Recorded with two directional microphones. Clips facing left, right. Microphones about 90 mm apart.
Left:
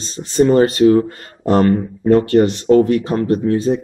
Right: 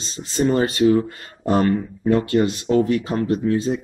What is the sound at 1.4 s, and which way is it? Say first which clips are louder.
Speech: left 5 dB; 65° left (ahead or behind).